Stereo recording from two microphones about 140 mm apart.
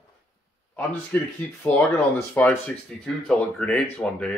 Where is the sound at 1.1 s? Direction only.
10° left (ahead or behind).